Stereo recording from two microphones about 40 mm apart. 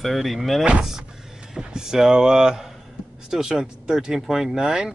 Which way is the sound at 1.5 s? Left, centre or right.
Centre.